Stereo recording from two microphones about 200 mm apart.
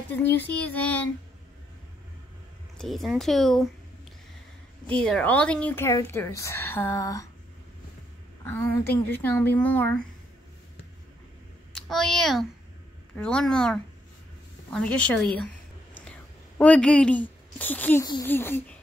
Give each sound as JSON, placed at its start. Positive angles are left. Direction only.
{"t": 0.1, "sound": "a woman's voice", "side_deg": 10}
{"t": 2.8, "sound": "a woman's voice", "side_deg": 0}
{"t": 8.5, "sound": "a woman's voice", "side_deg": 10}
{"t": 11.7, "sound": "a woman's voice", "side_deg": 0}
{"t": 15.3, "sound": "a sound", "side_deg": 5}
{"t": 18.2, "sound": "a woman's voice", "side_deg": 10}